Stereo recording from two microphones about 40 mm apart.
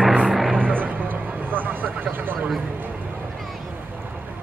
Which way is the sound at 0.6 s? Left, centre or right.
Right.